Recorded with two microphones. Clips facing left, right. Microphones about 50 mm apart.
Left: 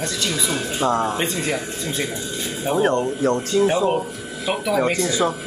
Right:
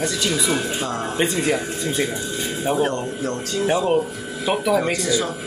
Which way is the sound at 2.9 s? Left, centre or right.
Left.